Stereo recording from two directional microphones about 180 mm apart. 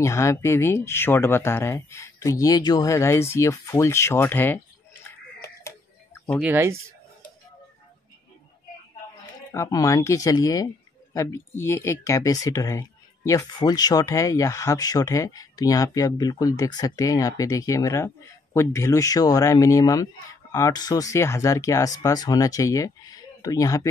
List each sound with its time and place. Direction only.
0.0 s speech: 15° left (ahead or behind)
6.4 s speech: 15° right (ahead or behind)
9.5 s speech: 20° left (ahead or behind)